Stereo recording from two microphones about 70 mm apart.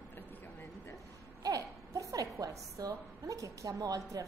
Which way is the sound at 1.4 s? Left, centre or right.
Right.